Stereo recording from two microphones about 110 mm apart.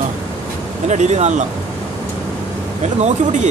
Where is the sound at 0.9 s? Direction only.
90° right.